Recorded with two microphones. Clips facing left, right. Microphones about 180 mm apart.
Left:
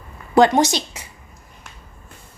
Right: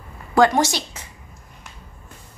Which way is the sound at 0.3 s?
20° left (ahead or behind).